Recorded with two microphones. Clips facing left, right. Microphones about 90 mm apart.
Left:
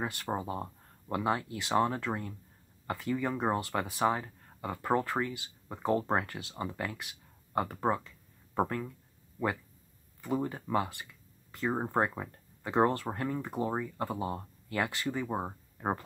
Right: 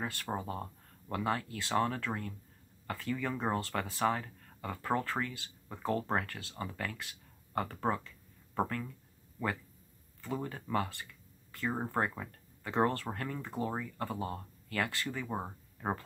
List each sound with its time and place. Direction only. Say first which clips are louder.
0.0 s speech: left 3 dB; 20° left (ahead or behind)